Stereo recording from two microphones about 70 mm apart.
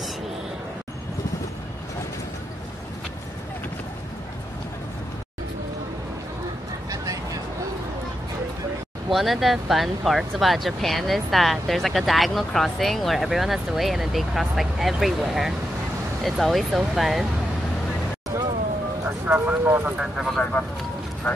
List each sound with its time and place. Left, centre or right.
9.1 s speech: centre
18.3 s vehicle: right
19.2 s speech: right
20.0 s speech: centre